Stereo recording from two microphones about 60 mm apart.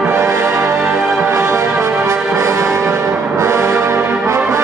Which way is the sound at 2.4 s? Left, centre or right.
Right.